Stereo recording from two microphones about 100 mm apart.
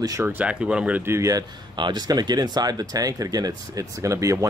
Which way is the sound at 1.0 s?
30° right (ahead or behind).